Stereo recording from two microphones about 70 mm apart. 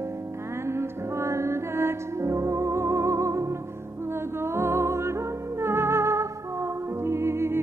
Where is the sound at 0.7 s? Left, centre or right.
Right.